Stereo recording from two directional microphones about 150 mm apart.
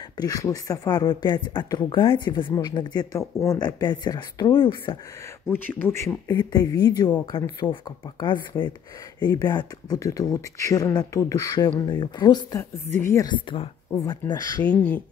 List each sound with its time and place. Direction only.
0.2 s speech: 25° left (ahead or behind)
5.5 s speech: 15° left (ahead or behind)
13.3 s speech: 30° left (ahead or behind)
14.6 s speech: 10° left (ahead or behind)